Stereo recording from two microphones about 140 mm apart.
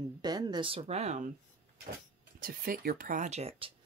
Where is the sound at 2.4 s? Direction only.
90° right; by 3.7 s 45° right (ahead or behind).